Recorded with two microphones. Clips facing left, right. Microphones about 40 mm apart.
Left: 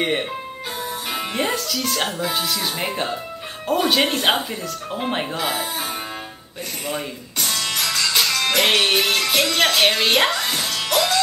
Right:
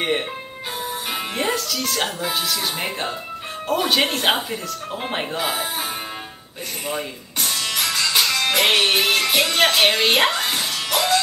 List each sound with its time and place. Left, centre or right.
0.0 s speech: centre
6.9 s music: centre